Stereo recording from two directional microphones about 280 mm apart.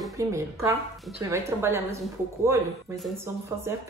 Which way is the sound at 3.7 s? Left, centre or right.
Centre.